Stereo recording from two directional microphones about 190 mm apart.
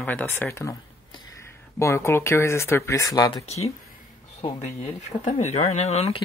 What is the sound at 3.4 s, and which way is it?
Speech, 35° left (ahead or behind).